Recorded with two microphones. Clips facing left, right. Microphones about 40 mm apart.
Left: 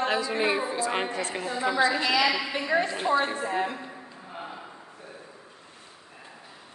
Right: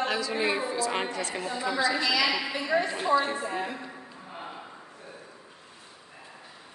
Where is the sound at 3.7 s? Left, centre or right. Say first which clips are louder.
Left 1 dB; centre.